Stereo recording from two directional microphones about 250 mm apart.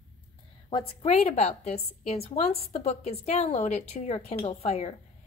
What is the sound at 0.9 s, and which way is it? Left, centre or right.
Speech, left.